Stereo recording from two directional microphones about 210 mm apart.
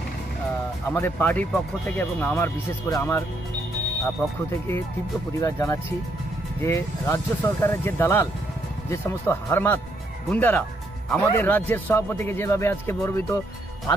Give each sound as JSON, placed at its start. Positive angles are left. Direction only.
{"t": 0.8, "sound": "speech", "side_deg": 10}
{"t": 4.5, "sound": "speech", "side_deg": 10}